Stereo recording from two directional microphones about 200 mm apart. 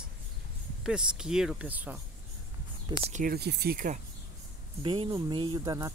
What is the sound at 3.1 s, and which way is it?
Speech, 45° right (ahead or behind).